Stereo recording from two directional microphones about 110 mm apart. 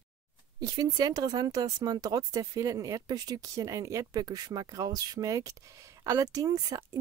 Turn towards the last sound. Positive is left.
turn(degrees=-35)  # may be behind; listen again after turning